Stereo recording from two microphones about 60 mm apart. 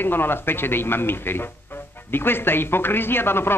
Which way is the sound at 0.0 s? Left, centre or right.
Left.